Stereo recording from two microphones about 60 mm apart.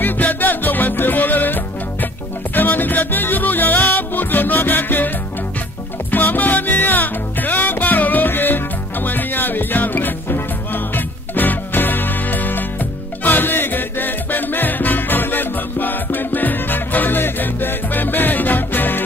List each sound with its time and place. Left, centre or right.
0.0 s music: left
6.1 s music: left